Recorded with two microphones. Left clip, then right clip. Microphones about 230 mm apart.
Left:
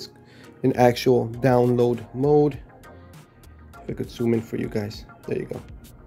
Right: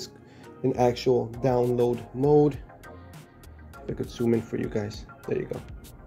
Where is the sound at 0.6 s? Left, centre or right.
Left.